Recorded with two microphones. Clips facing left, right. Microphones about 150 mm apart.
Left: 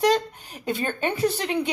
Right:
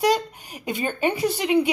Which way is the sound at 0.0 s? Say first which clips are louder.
Even; 10° right (ahead or behind).